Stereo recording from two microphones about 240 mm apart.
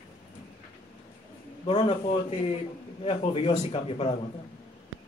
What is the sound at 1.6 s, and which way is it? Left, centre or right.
Speech, left.